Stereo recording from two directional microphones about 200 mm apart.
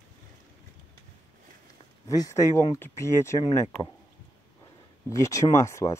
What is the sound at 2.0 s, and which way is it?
Speech, 15° left (ahead or behind).